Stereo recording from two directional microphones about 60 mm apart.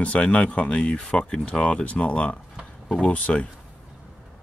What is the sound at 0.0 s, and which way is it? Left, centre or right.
Speech, left.